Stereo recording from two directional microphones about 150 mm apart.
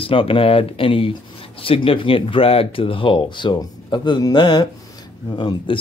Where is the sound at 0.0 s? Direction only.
35° left (ahead or behind).